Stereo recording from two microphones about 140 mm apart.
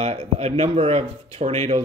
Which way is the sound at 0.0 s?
50° right (ahead or behind).